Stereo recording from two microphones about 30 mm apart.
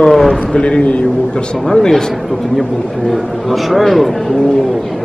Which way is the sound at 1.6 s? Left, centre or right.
Centre.